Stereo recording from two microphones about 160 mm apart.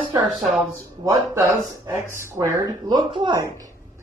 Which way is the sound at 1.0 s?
15° right (ahead or behind).